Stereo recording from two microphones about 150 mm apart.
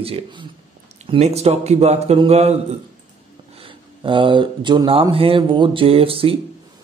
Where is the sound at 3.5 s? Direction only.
35° right (ahead or behind).